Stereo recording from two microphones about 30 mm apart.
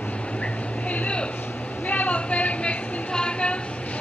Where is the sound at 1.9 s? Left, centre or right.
Left.